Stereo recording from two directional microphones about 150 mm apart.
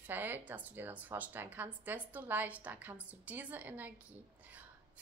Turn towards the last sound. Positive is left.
turn(degrees=-10)  # may be behind; listen again after turning